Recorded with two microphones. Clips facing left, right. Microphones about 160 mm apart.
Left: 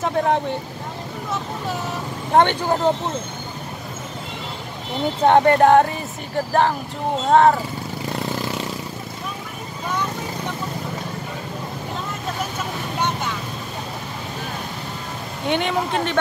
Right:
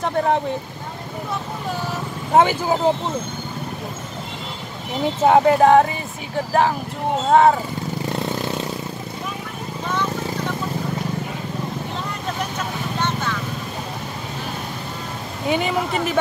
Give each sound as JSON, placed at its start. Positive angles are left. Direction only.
{"t": 0.0, "sound": "speech", "side_deg": 0}
{"t": 2.3, "sound": "speech", "side_deg": -5}
{"t": 5.2, "sound": "speech", "side_deg": -5}
{"t": 13.0, "sound": "vehicle", "side_deg": 15}
{"t": 15.4, "sound": "speech", "side_deg": -5}